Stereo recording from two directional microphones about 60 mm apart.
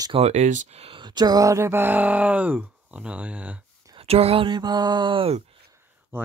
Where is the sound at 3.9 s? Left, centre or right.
Right.